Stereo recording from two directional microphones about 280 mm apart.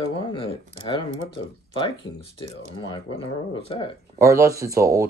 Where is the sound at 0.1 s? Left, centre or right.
Centre.